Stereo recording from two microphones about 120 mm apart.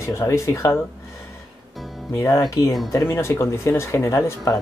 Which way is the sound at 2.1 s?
25° left (ahead or behind).